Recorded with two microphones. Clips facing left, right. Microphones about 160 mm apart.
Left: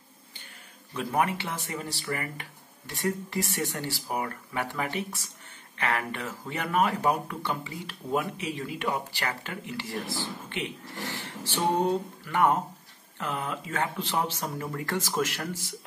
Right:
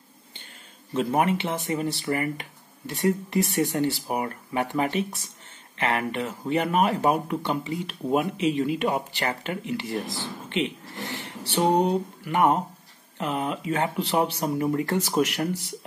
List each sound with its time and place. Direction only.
0.9 s speech: 20° right (ahead or behind)